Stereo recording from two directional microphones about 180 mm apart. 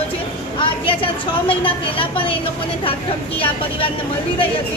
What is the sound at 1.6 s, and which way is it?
Speech, 30° left (ahead or behind).